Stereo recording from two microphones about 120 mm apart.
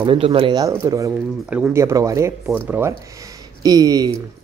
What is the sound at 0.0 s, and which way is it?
Speech, 50° right (ahead or behind).